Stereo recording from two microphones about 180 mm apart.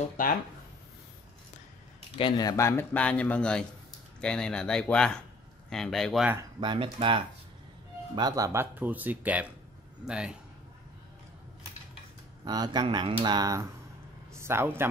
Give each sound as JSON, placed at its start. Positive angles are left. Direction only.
{"t": 0.2, "sound": "speech", "side_deg": 45}
{"t": 2.1, "sound": "speech", "side_deg": 25}
{"t": 6.3, "sound": "speech", "side_deg": -25}
{"t": 12.4, "sound": "a man's voice", "side_deg": -20}